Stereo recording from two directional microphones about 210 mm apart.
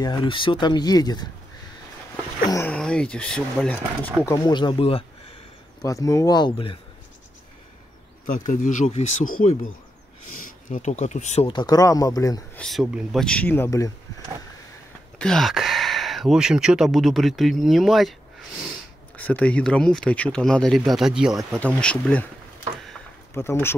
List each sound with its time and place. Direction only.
0.0 s speech: 20° left (ahead or behind)
2.4 s speech: 10° left (ahead or behind)
5.8 s speech: 15° left (ahead or behind)
8.3 s speech: 35° left (ahead or behind)
10.3 s speech: 40° left (ahead or behind)
11.4 s speech: 20° left (ahead or behind)
12.5 s speech: centre (ahead or behind)
15.1 s speech: 5° left (ahead or behind)
19.1 s speech: 5° left (ahead or behind)
23.3 s speech: 10° left (ahead or behind)